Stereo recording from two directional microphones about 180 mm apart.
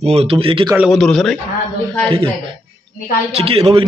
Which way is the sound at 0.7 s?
Centre (ahead or behind).